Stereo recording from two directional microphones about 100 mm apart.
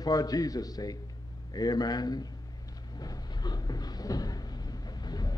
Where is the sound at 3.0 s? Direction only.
40° left (ahead or behind).